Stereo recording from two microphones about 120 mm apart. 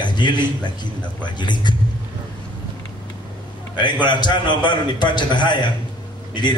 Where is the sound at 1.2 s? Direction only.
40° left (ahead or behind).